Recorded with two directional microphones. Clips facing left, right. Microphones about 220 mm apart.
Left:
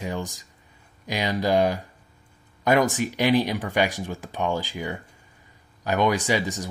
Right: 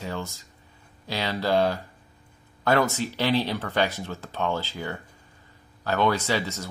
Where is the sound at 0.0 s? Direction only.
15° left (ahead or behind).